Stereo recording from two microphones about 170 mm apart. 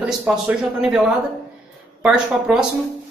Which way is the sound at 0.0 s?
5° right (ahead or behind).